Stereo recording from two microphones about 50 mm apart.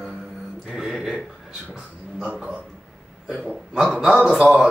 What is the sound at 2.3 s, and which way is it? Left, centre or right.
Speech, right.